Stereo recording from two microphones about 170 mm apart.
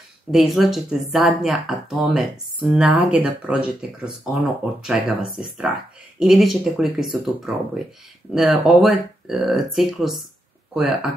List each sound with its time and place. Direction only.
0.3 s speech: centre (ahead or behind)